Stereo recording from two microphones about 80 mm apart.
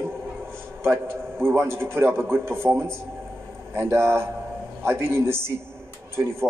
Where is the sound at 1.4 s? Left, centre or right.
Right.